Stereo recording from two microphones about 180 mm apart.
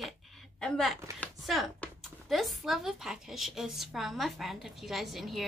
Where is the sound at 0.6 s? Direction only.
5° left (ahead or behind).